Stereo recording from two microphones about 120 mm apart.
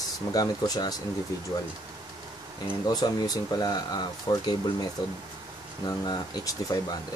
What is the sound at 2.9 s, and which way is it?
Speech, 30° left (ahead or behind).